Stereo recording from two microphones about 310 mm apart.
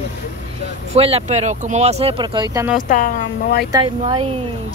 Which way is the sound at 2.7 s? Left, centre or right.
Left.